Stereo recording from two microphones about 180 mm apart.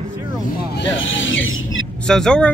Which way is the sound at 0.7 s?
90° left.